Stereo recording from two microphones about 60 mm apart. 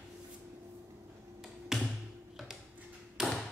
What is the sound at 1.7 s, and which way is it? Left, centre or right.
Tap, centre.